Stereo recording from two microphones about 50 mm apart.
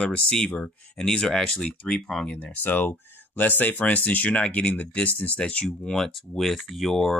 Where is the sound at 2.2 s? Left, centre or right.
Left.